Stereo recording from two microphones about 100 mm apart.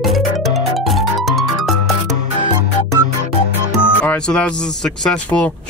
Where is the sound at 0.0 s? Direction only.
Centre (ahead or behind).